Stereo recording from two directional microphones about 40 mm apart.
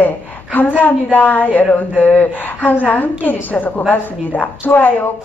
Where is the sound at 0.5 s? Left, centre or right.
Left.